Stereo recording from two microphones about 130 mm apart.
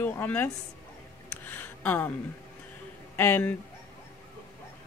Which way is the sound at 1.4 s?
15° left (ahead or behind).